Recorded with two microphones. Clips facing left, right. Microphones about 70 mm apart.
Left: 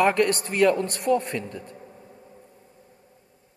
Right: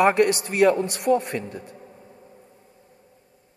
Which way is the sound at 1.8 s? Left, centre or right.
Centre.